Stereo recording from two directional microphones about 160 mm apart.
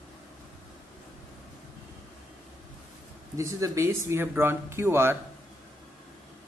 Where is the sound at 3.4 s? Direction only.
20° right (ahead or behind).